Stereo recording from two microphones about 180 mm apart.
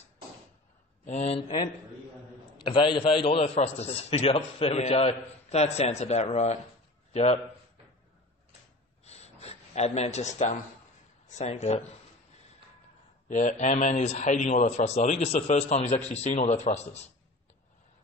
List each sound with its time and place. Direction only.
1.0 s a man's voice: 35° left (ahead or behind)
9.0 s a sound: 35° left (ahead or behind)
11.2 s a man's voice: 40° left (ahead or behind)
13.3 s a man's voice: 45° left (ahead or behind)